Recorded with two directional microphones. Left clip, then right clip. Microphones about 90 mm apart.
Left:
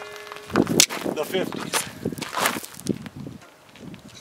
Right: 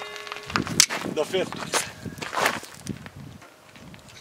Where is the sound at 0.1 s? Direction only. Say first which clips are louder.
Left 3 dB; 25° left (ahead or behind).